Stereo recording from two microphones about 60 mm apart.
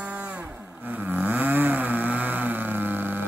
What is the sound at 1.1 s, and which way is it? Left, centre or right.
Vehicle, right.